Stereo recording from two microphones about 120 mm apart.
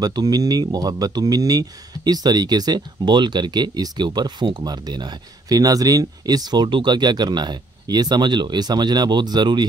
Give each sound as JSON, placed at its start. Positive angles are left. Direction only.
{"t": 0.0, "sound": "speech", "side_deg": -30}